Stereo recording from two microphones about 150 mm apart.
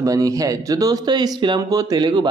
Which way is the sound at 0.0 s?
25° right (ahead or behind).